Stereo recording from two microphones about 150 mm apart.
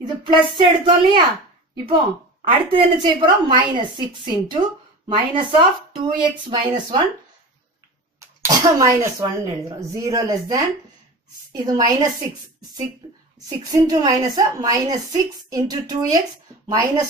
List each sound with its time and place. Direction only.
0.0 s a woman's voice: 30° right (ahead or behind)
8.2 s speech: 25° right (ahead or behind)
13.5 s speech: 25° right (ahead or behind)